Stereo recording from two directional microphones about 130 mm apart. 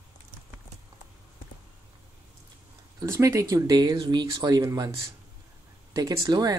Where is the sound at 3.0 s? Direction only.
25° right (ahead or behind).